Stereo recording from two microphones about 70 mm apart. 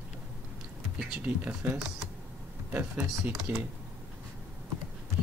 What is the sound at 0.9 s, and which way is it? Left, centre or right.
Speech, centre.